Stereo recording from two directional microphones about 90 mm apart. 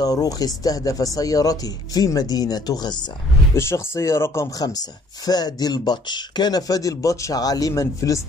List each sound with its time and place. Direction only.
0.0 s speech: 45° left (ahead or behind)
3.5 s speech: 30° left (ahead or behind)
5.2 s speech: 50° left (ahead or behind)